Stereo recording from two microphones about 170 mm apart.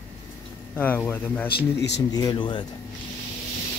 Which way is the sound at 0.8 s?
10° left (ahead or behind).